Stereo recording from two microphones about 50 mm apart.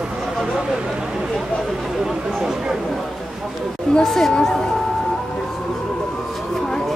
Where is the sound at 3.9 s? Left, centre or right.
Centre.